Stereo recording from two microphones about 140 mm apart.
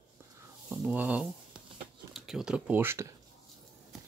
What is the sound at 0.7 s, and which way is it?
Speech, 10° right (ahead or behind).